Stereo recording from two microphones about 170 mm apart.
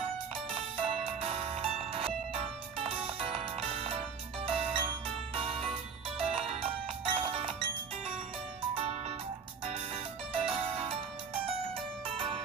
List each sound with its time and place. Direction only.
0.7 s music: 35° right (ahead or behind)
10.3 s music: 35° right (ahead or behind)